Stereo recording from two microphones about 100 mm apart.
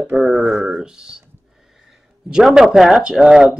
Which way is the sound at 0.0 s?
5° right (ahead or behind).